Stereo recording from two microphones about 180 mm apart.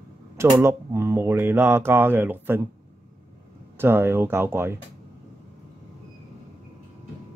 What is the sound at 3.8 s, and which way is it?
Speech, 10° right (ahead or behind).